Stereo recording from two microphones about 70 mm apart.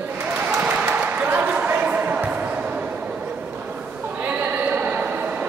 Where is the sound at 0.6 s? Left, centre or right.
Centre.